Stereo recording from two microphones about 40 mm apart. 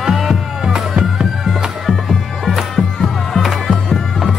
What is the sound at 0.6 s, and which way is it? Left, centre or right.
Music, right.